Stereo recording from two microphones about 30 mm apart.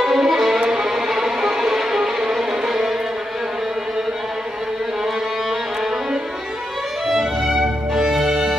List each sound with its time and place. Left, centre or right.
0.0 s music: centre
7.1 s music: centre